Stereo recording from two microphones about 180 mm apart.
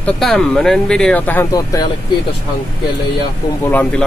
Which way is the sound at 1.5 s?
20° left (ahead or behind).